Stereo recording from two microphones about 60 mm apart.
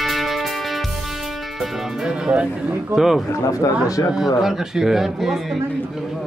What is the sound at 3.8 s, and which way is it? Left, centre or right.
Speech, left.